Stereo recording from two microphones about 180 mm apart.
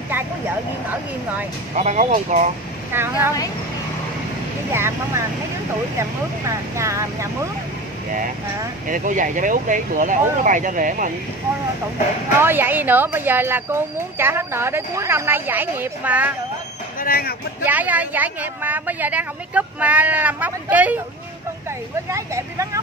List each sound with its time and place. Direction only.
1.8 s speech: 40° right (ahead or behind)
2.9 s speech: 10° right (ahead or behind)
4.7 s speech: 15° right (ahead or behind)
8.8 s speech: 45° right (ahead or behind)
12.4 s speech: 10° right (ahead or behind)
17.0 s speech: 55° left (ahead or behind)
17.6 s speech: 10° right (ahead or behind)
22.1 s speech: 15° right (ahead or behind)